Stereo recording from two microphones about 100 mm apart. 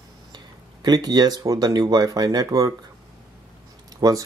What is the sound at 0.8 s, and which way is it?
Speech, 45° right (ahead or behind).